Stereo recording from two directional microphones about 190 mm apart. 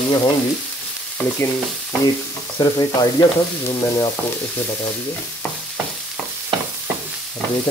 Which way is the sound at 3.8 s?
15° left (ahead or behind).